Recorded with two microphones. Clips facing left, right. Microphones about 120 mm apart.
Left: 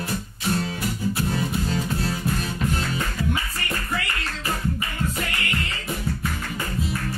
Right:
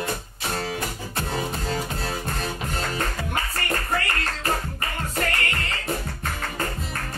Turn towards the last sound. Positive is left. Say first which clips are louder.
# left 2 dB
turn(degrees=-40)  # may be behind; listen again after turning